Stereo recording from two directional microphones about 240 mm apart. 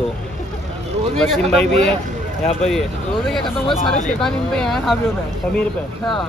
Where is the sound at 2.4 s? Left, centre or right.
Left.